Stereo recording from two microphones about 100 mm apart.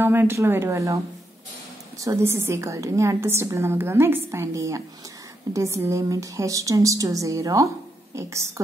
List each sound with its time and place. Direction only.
0.0 s a woman's voice: 25° right (ahead or behind)